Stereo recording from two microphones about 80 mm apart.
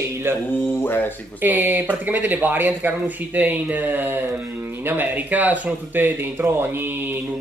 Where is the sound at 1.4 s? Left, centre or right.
Right.